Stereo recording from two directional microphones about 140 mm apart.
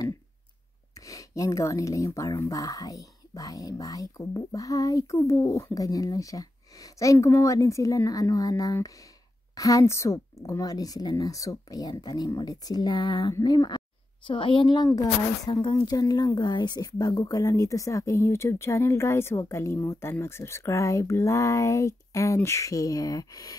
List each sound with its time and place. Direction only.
0.9 s speech: 25° left (ahead or behind)
14.9 s speech: 25° left (ahead or behind)